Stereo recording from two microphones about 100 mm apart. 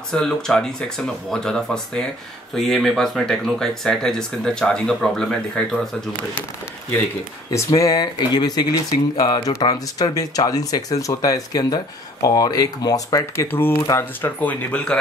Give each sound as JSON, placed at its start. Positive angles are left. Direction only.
{"t": 0.1, "sound": "speech", "side_deg": 5}
{"t": 7.5, "sound": "speech", "side_deg": 35}
{"t": 13.5, "sound": "speech", "side_deg": 20}